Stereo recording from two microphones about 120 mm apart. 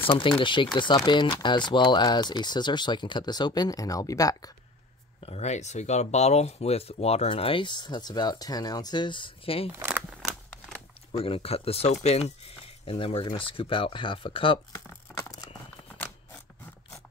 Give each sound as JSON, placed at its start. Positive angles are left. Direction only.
{"t": 0.4, "sound": "speech", "side_deg": 45}
{"t": 5.2, "sound": "speech", "side_deg": 65}
{"t": 10.0, "sound": "scissors", "side_deg": 0}
{"t": 11.1, "sound": "speech", "side_deg": 55}